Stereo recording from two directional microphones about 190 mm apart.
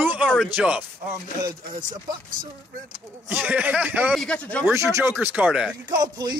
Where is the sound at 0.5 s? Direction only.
10° right (ahead or behind).